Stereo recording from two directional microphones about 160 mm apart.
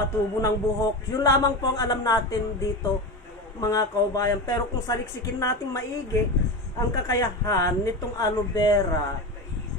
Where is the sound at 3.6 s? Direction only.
20° left (ahead or behind).